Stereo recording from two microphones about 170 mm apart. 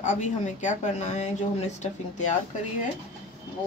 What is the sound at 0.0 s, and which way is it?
Speech, 45° left (ahead or behind).